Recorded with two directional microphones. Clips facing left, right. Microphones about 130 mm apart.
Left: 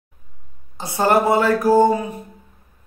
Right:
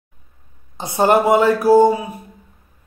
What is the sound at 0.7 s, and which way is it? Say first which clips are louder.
Speech: right 2 dB; 20° right (ahead or behind).